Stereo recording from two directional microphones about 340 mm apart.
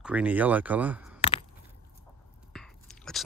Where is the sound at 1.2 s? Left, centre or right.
Centre.